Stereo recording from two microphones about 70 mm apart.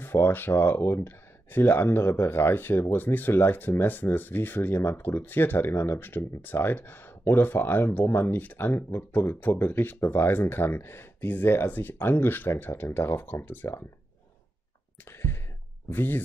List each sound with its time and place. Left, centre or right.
0.0 s speech: left
15.0 s a sound: left
15.9 s speech: left